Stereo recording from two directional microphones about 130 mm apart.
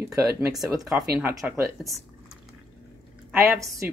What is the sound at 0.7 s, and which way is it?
Speech, 25° right (ahead or behind).